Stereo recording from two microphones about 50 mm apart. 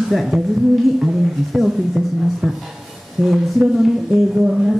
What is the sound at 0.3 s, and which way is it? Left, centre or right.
Speech, centre.